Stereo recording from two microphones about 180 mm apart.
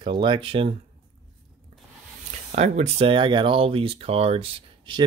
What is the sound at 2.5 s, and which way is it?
Speech, 35° right (ahead or behind).